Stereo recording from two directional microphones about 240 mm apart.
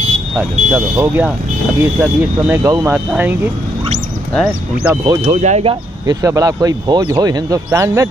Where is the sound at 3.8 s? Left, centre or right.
Right.